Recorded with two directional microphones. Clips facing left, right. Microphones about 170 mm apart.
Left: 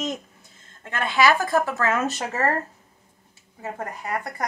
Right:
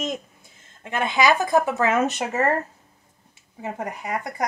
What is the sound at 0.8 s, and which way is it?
Speech, 20° right (ahead or behind).